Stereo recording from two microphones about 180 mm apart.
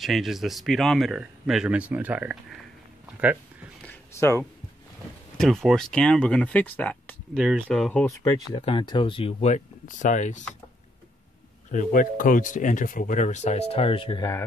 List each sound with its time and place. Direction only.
0.0 s speech: centre (ahead or behind)
3.8 s a sound: 10° left (ahead or behind)
5.4 s speech: centre (ahead or behind)
7.3 s speech: 5° right (ahead or behind)
8.1 s speech: 15° left (ahead or behind)
8.5 s speech: 30° left (ahead or behind)
11.7 s speech: 45° left (ahead or behind); by 14.3 s 25° left (ahead or behind)